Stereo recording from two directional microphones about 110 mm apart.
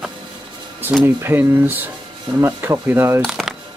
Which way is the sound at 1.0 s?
20° right (ahead or behind).